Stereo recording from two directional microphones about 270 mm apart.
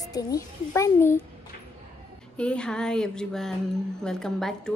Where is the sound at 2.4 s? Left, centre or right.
Centre.